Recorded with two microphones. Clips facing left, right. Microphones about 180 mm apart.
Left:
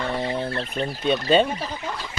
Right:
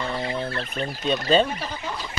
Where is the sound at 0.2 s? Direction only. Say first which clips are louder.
Left 2 dB; 25° left (ahead or behind).